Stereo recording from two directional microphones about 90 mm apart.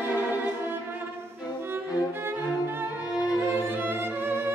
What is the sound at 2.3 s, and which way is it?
Music, 25° right (ahead or behind).